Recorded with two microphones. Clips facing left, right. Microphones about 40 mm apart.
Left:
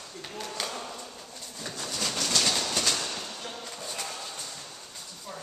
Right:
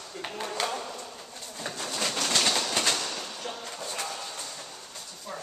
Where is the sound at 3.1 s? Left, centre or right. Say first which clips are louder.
Right 1 dB; centre.